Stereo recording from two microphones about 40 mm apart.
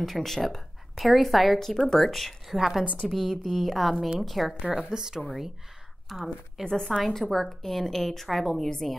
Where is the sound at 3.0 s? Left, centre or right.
Centre.